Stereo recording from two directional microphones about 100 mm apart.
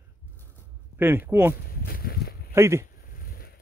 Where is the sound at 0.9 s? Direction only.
20° right (ahead or behind).